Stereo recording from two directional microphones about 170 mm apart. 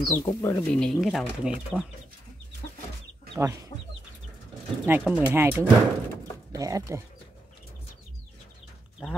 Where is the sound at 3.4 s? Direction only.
20° right (ahead or behind).